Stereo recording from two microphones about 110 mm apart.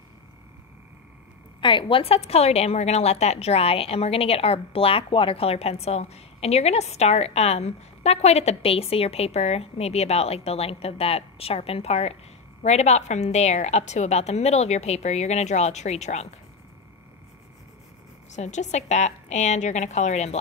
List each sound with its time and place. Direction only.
1.6 s a woman's voice: 50° left (ahead or behind); by 12.2 s 70° left (ahead or behind)
12.6 s a woman's voice: 90° left
18.3 s a woman's voice: 90° left